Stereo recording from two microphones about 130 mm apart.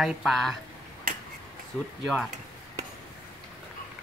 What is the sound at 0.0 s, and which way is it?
Speech, centre (ahead or behind).